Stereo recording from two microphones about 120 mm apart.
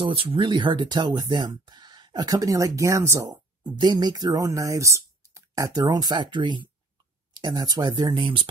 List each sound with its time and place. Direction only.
0.0 s speech: 45° right (ahead or behind)